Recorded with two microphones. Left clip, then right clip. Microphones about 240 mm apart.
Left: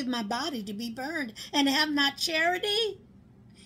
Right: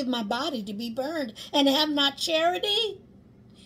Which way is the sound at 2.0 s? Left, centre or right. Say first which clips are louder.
Right 2 dB; centre.